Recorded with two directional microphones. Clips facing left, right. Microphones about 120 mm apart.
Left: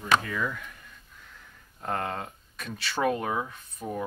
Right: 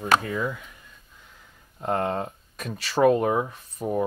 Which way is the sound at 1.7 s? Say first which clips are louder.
Right 6 dB; 25° right (ahead or behind).